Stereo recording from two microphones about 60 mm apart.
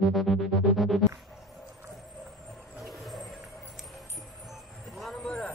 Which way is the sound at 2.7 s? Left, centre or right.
Centre.